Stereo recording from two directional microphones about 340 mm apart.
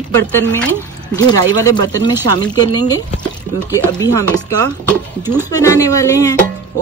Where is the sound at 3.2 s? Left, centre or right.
Centre.